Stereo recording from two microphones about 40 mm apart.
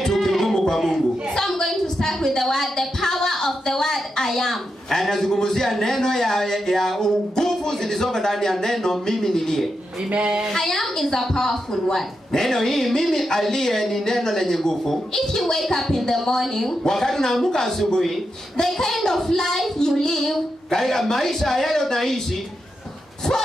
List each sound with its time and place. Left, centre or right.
0.0 s music: centre
1.4 s a sound: centre
9.0 s speech: centre
10.1 s speech: right
10.5 s a woman's voice: centre